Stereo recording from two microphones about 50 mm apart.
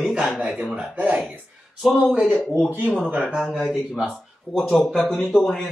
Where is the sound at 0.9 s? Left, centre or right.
Right.